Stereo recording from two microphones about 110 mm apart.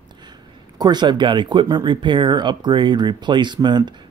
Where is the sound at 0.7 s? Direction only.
40° right (ahead or behind).